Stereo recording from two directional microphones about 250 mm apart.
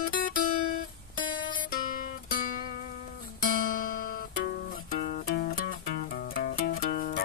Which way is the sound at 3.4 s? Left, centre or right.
Left.